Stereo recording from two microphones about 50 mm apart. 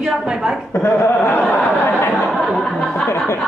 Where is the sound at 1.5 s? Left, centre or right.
Left.